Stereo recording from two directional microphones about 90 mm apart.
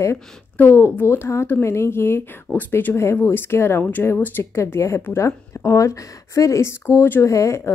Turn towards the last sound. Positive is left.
turn(degrees=30)  # may be behind; listen again after turning